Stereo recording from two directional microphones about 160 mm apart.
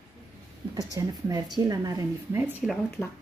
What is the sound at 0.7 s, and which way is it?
A woman's voice, 20° right (ahead or behind).